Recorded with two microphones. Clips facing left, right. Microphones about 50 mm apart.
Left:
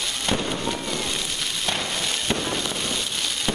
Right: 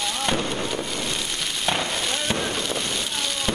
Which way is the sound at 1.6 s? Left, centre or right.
Centre.